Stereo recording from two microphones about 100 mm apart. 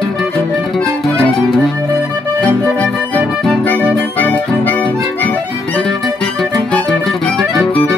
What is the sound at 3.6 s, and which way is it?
Music, 20° left (ahead or behind).